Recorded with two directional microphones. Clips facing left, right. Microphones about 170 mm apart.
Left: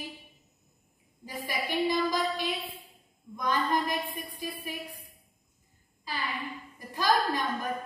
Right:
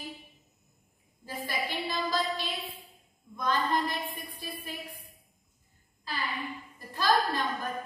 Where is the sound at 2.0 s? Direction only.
15° left (ahead or behind).